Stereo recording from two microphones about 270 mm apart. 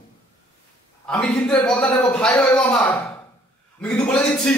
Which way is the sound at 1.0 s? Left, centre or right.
Centre.